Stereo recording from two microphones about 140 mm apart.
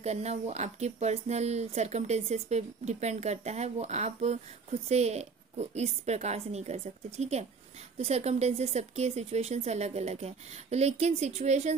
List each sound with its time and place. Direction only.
0.0 s speech: 50° right (ahead or behind)